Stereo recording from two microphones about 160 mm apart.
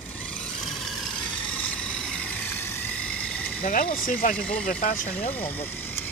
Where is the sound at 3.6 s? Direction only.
60° left (ahead or behind).